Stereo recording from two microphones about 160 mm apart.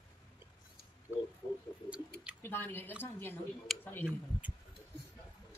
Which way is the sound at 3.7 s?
Centre (ahead or behind).